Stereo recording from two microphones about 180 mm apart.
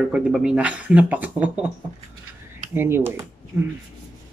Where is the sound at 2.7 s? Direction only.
10° right (ahead or behind).